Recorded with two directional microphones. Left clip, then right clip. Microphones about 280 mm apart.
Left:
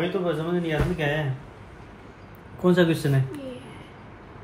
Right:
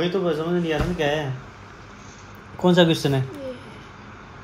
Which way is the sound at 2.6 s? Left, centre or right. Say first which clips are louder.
Right 3 dB; right.